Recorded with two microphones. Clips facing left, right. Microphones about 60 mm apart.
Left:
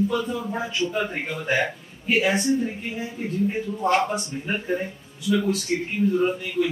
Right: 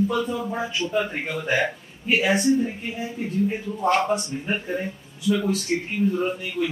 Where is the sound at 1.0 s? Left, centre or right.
Centre.